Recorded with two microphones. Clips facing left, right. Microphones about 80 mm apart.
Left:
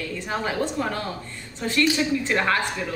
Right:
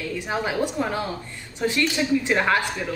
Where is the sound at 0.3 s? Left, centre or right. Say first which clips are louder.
Right 1 dB; centre.